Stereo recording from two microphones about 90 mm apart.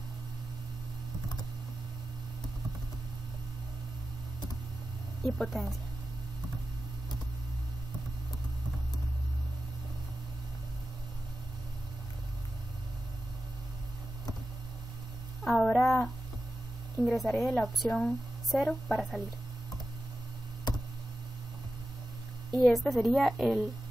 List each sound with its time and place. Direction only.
5.2 s a woman's voice: centre (ahead or behind)
15.4 s a sound: 5° left (ahead or behind)
15.7 s speech: 25° left (ahead or behind)
17.0 s a woman's voice: centre (ahead or behind)
22.5 s a woman's voice: centre (ahead or behind)